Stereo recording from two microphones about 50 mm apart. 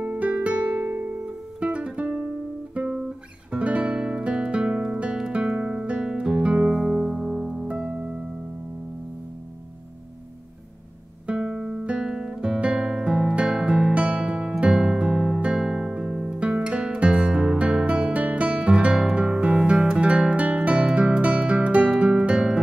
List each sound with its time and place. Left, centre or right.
0.1 s music: right
0.8 s music: right
1.2 s music: right
2.8 s guitar: right
6.8 s music: centre
7.6 s music: right
11.4 s guitar: centre
14.7 s music: centre
18.5 s guitar: right
19.5 s music: centre